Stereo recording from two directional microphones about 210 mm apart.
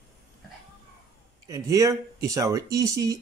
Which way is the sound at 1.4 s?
15° right (ahead or behind).